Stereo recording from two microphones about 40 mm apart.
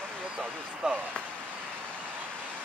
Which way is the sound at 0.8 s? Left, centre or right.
Right.